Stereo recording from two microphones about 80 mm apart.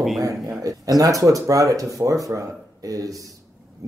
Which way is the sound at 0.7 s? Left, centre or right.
Right.